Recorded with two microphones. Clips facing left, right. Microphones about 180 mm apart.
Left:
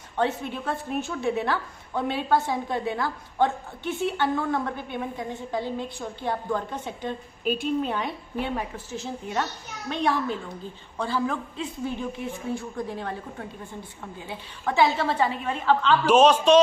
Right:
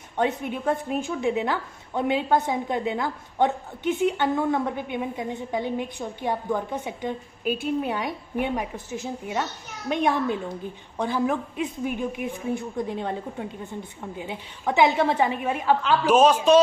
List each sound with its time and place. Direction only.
0.2 s a woman's voice: 15° right (ahead or behind)